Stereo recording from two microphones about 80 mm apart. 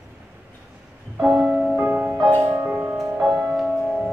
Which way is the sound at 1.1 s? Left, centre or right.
Centre.